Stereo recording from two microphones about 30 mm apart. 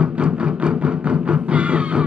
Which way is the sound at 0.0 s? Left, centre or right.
Right.